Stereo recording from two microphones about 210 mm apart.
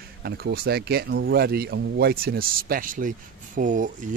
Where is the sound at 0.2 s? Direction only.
50° right (ahead or behind).